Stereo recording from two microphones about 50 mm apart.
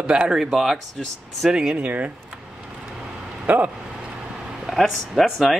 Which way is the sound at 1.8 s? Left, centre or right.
Right.